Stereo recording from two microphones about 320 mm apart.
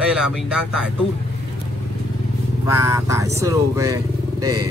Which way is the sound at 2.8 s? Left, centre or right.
Centre.